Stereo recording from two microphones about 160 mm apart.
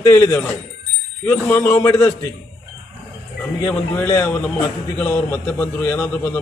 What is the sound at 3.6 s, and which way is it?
A man's voice, 15° left (ahead or behind).